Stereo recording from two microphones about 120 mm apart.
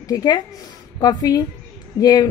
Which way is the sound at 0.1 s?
35° left (ahead or behind).